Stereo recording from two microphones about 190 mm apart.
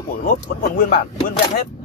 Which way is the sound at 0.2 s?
45° left (ahead or behind).